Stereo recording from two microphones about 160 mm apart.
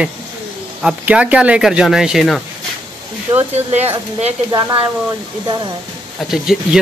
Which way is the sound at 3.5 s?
40° right (ahead or behind).